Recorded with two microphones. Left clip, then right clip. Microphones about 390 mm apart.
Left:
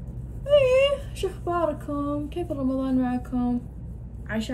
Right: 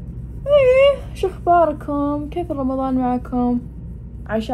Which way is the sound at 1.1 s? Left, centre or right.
Right.